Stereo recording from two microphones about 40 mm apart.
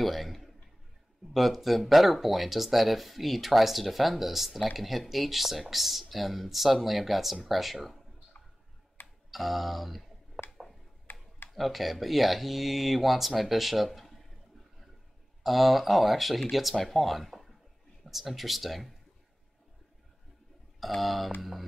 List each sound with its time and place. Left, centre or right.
0.0 s a man's voice: centre
9.0 s a sound: centre
11.1 s tick-tock: left
11.5 s speech: centre
15.4 s speech: centre
20.8 s speech: centre